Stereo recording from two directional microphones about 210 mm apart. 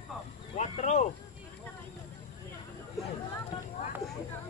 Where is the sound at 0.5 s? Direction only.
35° left (ahead or behind).